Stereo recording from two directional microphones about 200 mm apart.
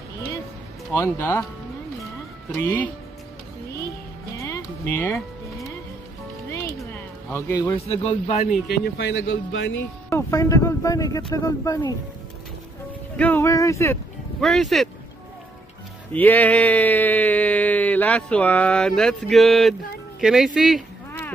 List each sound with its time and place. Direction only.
0.9 s speech: 15° left (ahead or behind)
2.5 s speech: 10° left (ahead or behind)
4.4 s music: 10° left (ahead or behind)
6.8 s a sound: 5° left (ahead or behind)
7.7 s a man's voice: 30° left (ahead or behind)
8.6 s speech: 55° left (ahead or behind); by 9.8 s 70° left (ahead or behind)
10.0 s speech: 15° left (ahead or behind)
13.1 s speech: 10° left (ahead or behind)
14.4 s speech: centre (ahead or behind)
16.2 s speech: 10° left (ahead or behind)